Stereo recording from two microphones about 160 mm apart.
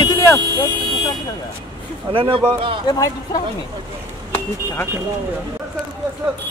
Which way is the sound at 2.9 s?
25° left (ahead or behind).